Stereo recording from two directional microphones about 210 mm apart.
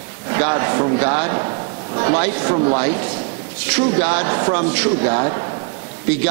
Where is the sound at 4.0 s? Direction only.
15° right (ahead or behind).